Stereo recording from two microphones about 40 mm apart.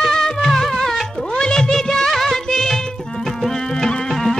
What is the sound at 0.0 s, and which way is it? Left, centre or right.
Music, centre.